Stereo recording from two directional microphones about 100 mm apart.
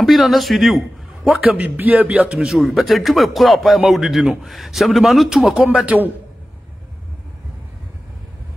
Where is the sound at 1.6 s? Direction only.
15° right (ahead or behind).